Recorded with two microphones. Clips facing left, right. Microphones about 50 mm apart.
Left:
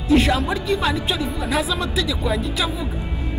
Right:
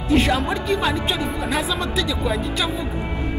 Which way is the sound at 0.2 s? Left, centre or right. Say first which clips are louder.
Even; centre.